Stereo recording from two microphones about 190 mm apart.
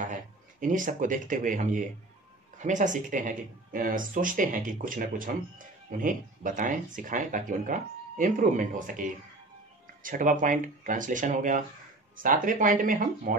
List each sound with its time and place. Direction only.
0.0 s speech: 45° right (ahead or behind)
10.0 s speech: 45° right (ahead or behind)